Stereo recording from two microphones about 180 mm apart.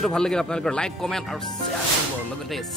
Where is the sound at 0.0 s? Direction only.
5° left (ahead or behind).